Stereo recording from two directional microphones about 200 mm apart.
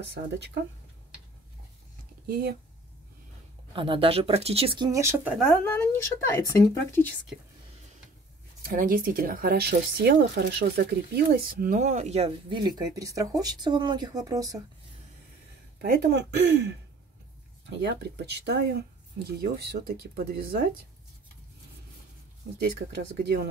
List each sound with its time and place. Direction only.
0.0 s speech: 60° right (ahead or behind)
2.2 s speech: 50° right (ahead or behind)
3.7 s speech: 25° right (ahead or behind); by 5.4 s 10° right (ahead or behind)
5.5 s speech: 10° left (ahead or behind)
8.6 s speech: 45° right (ahead or behind); by 14.6 s 20° right (ahead or behind)
15.8 s speech: 55° right (ahead or behind)
23.2 s speech: 55° right (ahead or behind)